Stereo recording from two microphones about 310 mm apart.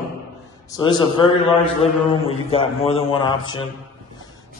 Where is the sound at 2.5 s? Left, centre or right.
Centre.